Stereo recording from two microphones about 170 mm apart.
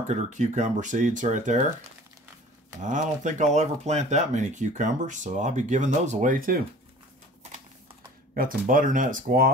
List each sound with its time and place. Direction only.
0.1 s speech: 45° right (ahead or behind)
2.8 s speech: 45° right (ahead or behind)
8.4 s speech: 50° right (ahead or behind)